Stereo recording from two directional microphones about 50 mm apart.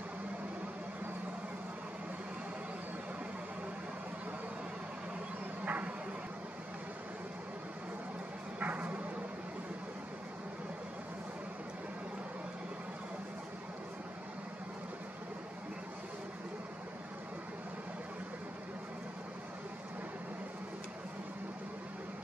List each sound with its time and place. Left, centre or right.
5.7 s vehicle: right
8.5 s bow-wow: right